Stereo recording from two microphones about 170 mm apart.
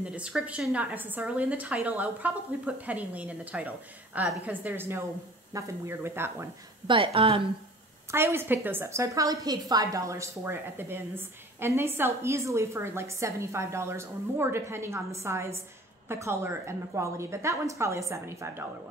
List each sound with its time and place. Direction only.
0.0 s a woman's voice: 5° right (ahead or behind)
7.2 s a woman's voice: 35° right (ahead or behind)
8.1 s a woman's voice: 15° right (ahead or behind)